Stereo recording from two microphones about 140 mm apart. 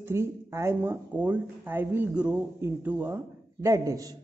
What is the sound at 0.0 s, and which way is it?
A man's voice, 20° right (ahead or behind).